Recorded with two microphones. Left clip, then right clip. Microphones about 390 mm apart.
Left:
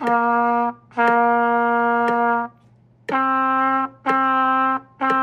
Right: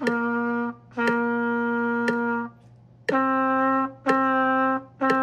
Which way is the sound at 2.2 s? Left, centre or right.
Centre.